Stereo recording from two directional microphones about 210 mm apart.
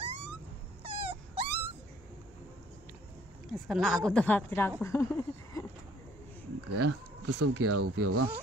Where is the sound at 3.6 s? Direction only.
Centre (ahead or behind).